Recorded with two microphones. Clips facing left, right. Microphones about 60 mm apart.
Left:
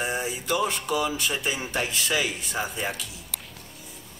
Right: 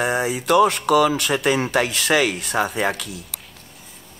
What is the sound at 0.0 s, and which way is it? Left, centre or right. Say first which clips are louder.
Speech: right 7 dB; right.